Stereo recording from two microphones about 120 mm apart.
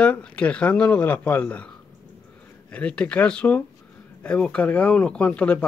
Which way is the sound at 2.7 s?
10° left (ahead or behind).